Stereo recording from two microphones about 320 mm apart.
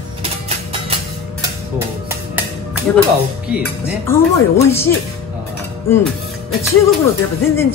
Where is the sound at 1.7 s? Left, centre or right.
Centre.